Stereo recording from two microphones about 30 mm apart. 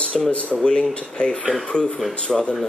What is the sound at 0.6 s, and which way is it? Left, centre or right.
Speech, left.